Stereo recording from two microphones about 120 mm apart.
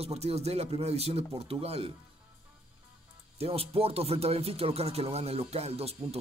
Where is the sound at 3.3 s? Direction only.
55° right (ahead or behind).